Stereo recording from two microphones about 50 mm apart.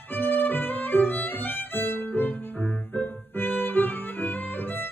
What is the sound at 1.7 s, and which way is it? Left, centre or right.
Music, left.